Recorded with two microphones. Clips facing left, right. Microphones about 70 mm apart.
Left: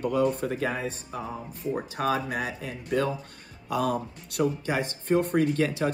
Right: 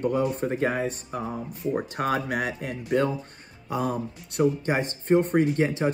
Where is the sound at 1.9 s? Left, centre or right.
Right.